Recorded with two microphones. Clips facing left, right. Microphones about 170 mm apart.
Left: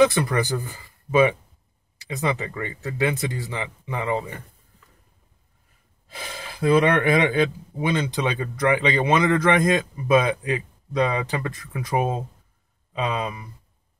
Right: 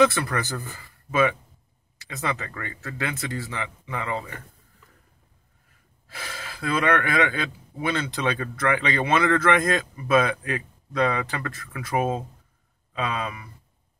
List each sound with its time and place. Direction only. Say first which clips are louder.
0.0 s speech: left 2 dB; 15° left (ahead or behind)
6.0 s speech: left 2 dB; 20° left (ahead or behind)